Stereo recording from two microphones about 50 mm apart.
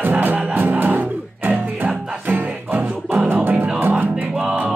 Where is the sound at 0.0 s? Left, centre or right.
Right.